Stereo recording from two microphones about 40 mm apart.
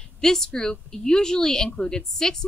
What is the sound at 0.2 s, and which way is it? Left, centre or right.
A woman's voice, centre.